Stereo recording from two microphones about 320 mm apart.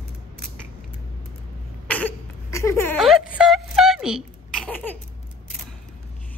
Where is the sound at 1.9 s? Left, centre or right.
Centre.